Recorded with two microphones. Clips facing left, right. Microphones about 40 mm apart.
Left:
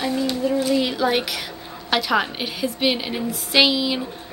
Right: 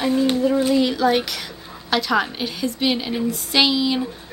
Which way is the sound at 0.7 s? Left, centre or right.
Centre.